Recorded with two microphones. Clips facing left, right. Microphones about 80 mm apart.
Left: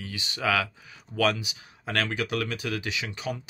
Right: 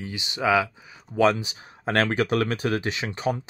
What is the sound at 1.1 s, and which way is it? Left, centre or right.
Speech, right.